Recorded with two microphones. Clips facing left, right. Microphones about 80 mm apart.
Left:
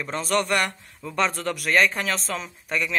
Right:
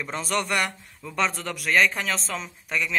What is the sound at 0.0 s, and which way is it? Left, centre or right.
Speech, centre.